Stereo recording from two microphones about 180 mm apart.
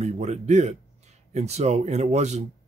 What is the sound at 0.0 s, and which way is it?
Speech, 40° right (ahead or behind).